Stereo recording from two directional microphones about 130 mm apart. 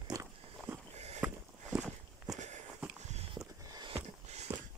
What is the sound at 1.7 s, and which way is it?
Walk, 5° right (ahead or behind).